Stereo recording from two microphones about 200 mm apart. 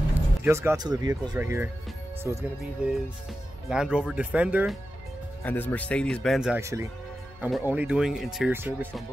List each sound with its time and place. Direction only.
0.4 s speech: 15° right (ahead or behind)
3.6 s speech: 5° right (ahead or behind)
5.4 s speech: 10° left (ahead or behind)
6.6 s speech: 15° right (ahead or behind)